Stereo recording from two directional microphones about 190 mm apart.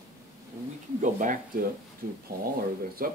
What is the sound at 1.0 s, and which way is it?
Speech, 45° right (ahead or behind).